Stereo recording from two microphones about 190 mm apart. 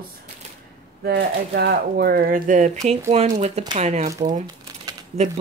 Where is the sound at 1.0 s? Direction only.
55° right (ahead or behind); by 4.1 s 35° right (ahead or behind).